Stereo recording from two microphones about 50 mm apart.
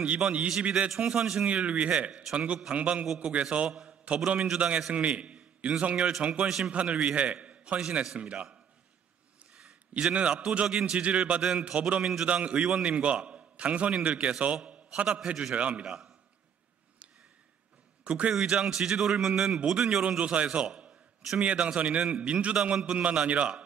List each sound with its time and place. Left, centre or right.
0.0 s a man's voice: right
1.5 s a man's voice: right
9.6 s a man's voice: centre
12.3 s a man's voice: right
15.0 s a man's voice: centre
15.5 s a man's voice: right
18.0 s a man's voice: right
20.0 s a man's voice: right